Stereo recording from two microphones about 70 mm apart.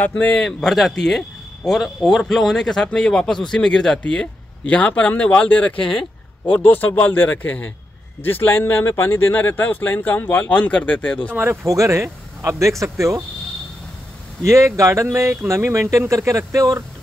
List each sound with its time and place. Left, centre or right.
0.0 s speech: left
0.4 s speech: centre
4.0 s speech: centre
11.6 s speech: right
14.4 s speech: right